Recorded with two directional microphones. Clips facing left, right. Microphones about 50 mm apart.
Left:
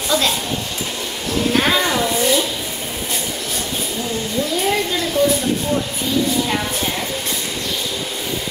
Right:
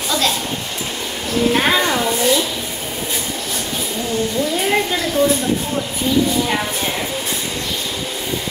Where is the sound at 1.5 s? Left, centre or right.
Centre.